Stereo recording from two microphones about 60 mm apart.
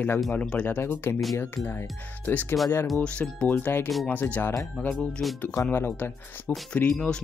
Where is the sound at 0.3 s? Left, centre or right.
Left.